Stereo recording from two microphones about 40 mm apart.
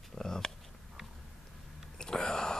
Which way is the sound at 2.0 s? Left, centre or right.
Centre.